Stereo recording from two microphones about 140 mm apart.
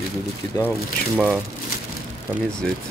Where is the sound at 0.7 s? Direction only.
Centre (ahead or behind).